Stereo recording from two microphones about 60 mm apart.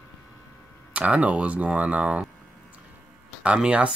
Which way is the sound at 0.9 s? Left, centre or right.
Right.